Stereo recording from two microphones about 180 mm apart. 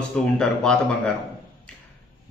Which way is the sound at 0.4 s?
5° left (ahead or behind).